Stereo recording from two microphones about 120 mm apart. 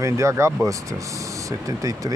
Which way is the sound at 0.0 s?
25° right (ahead or behind).